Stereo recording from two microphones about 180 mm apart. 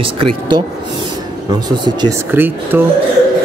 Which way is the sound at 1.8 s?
25° right (ahead or behind).